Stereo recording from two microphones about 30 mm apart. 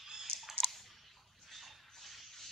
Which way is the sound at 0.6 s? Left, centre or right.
Centre.